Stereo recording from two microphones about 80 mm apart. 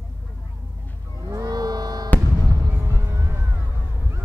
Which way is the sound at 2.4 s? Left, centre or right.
Right.